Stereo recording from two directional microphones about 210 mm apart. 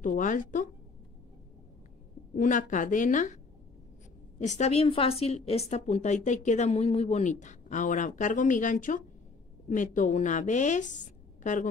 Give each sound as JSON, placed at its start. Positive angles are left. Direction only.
{"t": 0.0, "sound": "a woman's voice", "side_deg": 40}
{"t": 2.3, "sound": "a woman's voice", "side_deg": 40}
{"t": 4.4, "sound": "a woman's voice", "side_deg": 35}